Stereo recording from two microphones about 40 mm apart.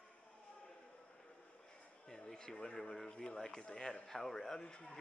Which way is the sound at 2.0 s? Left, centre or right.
Centre.